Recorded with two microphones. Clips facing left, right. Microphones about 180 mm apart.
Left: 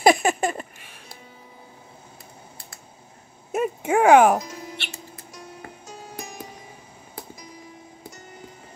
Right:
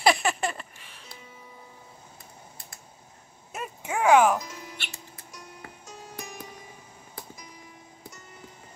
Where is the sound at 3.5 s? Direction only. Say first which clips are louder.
Left 11 dB; 55° left (ahead or behind).